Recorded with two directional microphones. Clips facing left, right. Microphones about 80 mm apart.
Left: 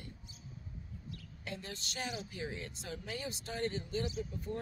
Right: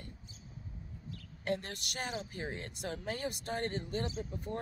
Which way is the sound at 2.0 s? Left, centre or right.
Right.